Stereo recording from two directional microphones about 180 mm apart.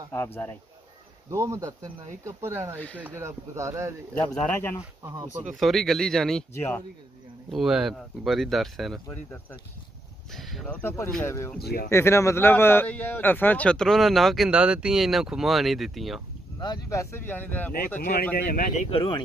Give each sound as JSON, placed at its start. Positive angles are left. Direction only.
{"t": 0.1, "sound": "speech", "side_deg": 10}
{"t": 1.3, "sound": "speech", "side_deg": -15}
{"t": 4.5, "sound": "speech", "side_deg": 15}
{"t": 5.0, "sound": "speech", "side_deg": -20}
{"t": 5.6, "sound": "a man's voice", "side_deg": 0}
{"t": 7.5, "sound": "a man's voice", "side_deg": 0}
{"t": 10.3, "sound": "a man's voice", "side_deg": 0}
{"t": 11.6, "sound": "a man's voice", "side_deg": 60}
{"t": 11.9, "sound": "a man's voice", "side_deg": 15}
{"t": 16.5, "sound": "speech", "side_deg": 25}
{"t": 18.3, "sound": "a man's voice", "side_deg": 55}
{"t": 18.9, "sound": "speech", "side_deg": 30}